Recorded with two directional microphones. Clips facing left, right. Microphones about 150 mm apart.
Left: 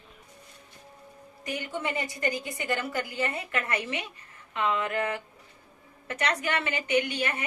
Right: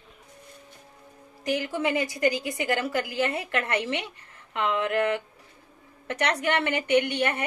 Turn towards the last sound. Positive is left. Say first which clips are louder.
# right 4 dB
turn(degrees=-65)  # may be behind; listen again after turning